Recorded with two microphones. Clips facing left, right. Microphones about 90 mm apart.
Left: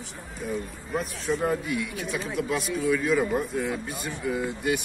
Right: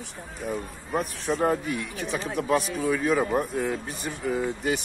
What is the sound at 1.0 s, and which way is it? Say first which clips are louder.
A man's voice: right 2 dB; 50° right (ahead or behind).